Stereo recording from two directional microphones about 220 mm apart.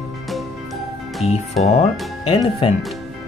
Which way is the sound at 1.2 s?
30° left (ahead or behind).